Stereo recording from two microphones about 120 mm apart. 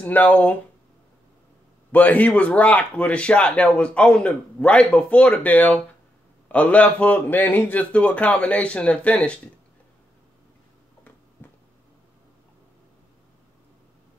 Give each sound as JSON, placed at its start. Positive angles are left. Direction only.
{"t": 0.0, "sound": "a man's voice", "side_deg": 15}
{"t": 1.9, "sound": "a man's voice", "side_deg": 15}
{"t": 11.4, "sound": "a sound", "side_deg": 20}